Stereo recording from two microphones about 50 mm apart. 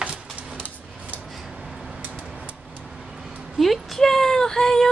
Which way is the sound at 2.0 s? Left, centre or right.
Right.